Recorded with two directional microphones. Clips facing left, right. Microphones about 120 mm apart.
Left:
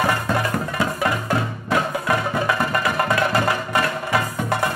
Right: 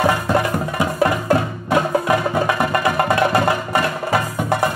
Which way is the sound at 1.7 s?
25° right (ahead or behind).